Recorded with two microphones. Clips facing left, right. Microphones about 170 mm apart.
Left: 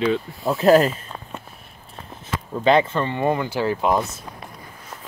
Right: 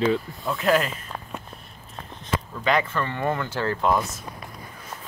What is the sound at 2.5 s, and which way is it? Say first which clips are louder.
Speech: left 7 dB; 30° left (ahead or behind).